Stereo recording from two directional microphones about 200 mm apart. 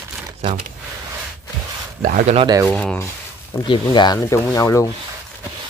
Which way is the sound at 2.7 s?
Centre (ahead or behind).